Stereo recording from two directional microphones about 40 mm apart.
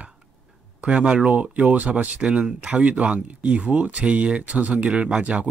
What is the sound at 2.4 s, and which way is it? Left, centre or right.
Speech, right.